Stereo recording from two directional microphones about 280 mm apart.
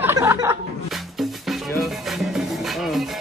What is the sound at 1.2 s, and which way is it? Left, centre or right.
Music, centre.